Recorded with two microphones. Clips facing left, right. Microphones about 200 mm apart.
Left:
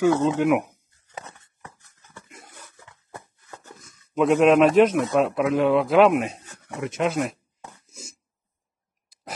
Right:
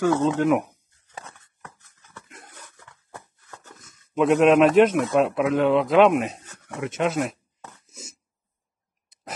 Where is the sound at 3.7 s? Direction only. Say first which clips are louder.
Even; centre (ahead or behind).